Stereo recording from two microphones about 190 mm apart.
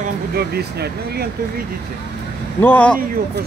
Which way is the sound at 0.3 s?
55° right (ahead or behind).